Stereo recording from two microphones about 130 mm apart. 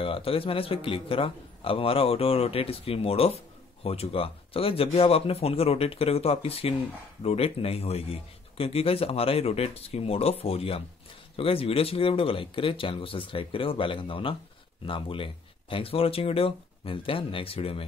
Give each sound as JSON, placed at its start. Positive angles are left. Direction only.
{"t": 0.0, "sound": "a man's voice", "side_deg": 45}